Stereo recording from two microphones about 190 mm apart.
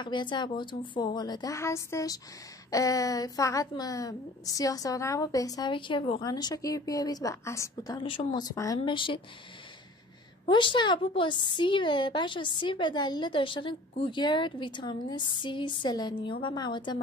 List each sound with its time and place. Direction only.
0.0 s a woman's voice: 25° left (ahead or behind)
10.5 s a woman's voice: 25° left (ahead or behind)